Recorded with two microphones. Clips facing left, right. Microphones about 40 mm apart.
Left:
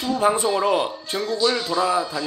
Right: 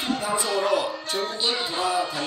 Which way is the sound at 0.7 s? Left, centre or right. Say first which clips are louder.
Left 2 dB; left.